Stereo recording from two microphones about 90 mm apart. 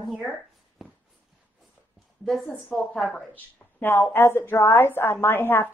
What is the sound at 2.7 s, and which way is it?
Speech, 5° left (ahead or behind).